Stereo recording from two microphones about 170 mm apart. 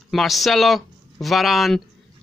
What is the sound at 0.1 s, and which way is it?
Speech, centre (ahead or behind).